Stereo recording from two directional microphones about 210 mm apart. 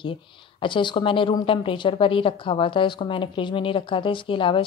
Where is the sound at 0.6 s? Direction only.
25° left (ahead or behind).